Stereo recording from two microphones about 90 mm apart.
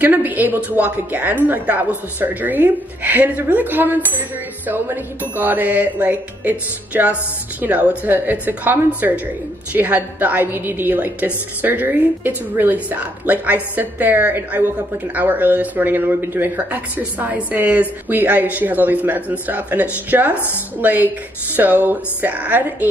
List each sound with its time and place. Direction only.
0.0 s a woman's voice: 20° right (ahead or behind)
5.3 s music: 20° right (ahead or behind)
8.0 s a woman's voice: 20° right (ahead or behind)
19.4 s music: 20° right (ahead or behind)
20.8 s a woman's voice: 20° right (ahead or behind)